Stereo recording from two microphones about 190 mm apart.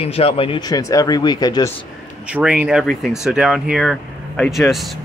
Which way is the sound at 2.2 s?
5° right (ahead or behind).